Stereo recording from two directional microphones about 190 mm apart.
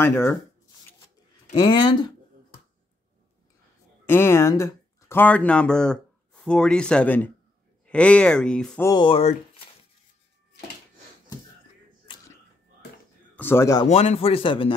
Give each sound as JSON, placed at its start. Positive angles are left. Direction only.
{"t": 0.0, "sound": "speech", "side_deg": 10}
{"t": 1.5, "sound": "speech", "side_deg": 25}
{"t": 4.0, "sound": "speech", "side_deg": 10}
{"t": 8.8, "sound": "speech", "side_deg": 25}
{"t": 13.4, "sound": "speech", "side_deg": 10}
{"t": 13.8, "sound": "speech", "side_deg": 30}